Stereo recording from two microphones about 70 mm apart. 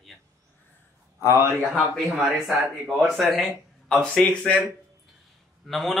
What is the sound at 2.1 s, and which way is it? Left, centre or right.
Speech, centre.